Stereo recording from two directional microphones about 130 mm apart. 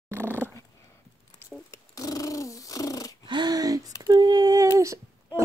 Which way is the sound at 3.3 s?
35° right (ahead or behind).